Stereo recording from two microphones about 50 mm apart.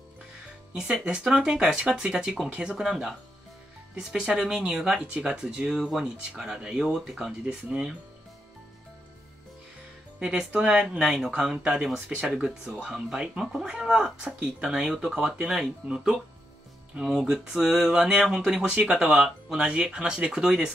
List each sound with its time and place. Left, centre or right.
0.7 s speech: centre
2.8 s speech: centre
10.2 s speech: centre